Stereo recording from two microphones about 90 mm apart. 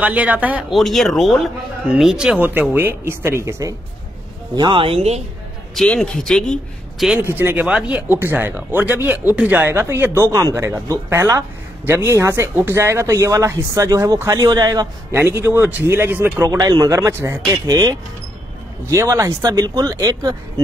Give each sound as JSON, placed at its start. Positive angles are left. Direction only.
{"t": 0.0, "sound": "speech", "side_deg": -15}
{"t": 0.7, "sound": "speech", "side_deg": 0}
{"t": 2.4, "sound": "speech", "side_deg": -20}
{"t": 4.6, "sound": "speech", "side_deg": -65}
{"t": 5.9, "sound": "speech", "side_deg": 5}
{"t": 7.3, "sound": "speech", "side_deg": -20}
{"t": 15.1, "sound": "speech", "side_deg": -30}
{"t": 16.4, "sound": "speech", "side_deg": -45}
{"t": 17.5, "sound": "speech", "side_deg": -45}